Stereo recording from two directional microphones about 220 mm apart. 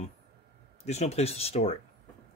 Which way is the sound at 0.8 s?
30° left (ahead or behind).